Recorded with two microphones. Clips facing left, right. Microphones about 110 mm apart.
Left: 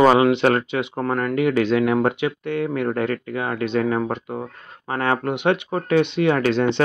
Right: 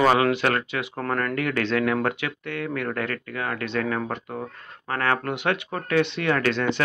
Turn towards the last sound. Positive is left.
turn(degrees=20)  # may be behind; listen again after turning